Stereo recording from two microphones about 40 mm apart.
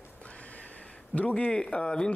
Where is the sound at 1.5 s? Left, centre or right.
Left.